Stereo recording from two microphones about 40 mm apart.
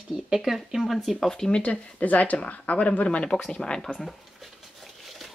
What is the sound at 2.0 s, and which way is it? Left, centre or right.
Speech, left.